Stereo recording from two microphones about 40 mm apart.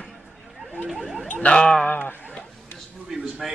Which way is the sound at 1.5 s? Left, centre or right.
Centre.